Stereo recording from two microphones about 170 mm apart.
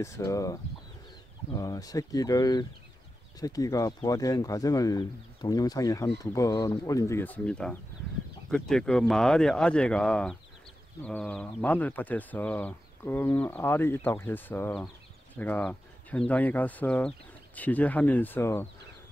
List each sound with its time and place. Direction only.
0.0 s speech: 20° left (ahead or behind)